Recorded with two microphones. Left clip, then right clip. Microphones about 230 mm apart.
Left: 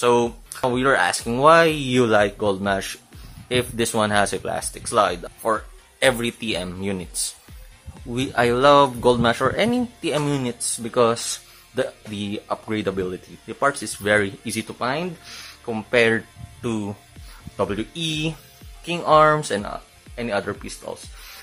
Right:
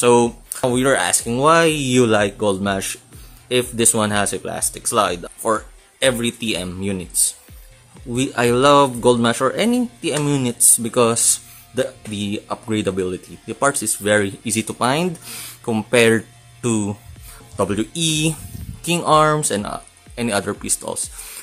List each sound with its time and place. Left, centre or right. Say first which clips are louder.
0.0 s speech: right 4 dB; centre
8.1 s speech: right 2 dB; centre